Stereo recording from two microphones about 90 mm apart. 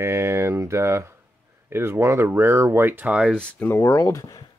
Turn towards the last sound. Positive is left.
turn(degrees=35)  # may be behind; listen again after turning